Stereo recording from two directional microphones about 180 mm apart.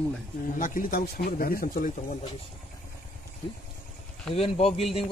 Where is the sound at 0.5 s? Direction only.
50° left (ahead or behind).